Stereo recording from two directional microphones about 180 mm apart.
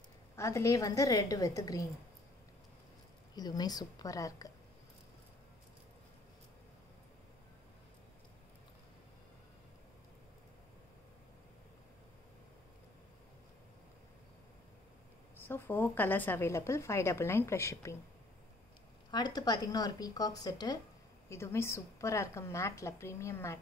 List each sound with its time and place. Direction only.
0.4 s a woman's voice: 15° left (ahead or behind)
3.3 s a woman's voice: 20° left (ahead or behind)
15.3 s a woman's voice: 10° left (ahead or behind)
19.0 s a woman's voice: 25° left (ahead or behind)